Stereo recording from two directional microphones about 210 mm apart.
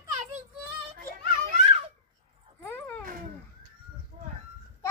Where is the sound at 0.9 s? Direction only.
40° right (ahead or behind).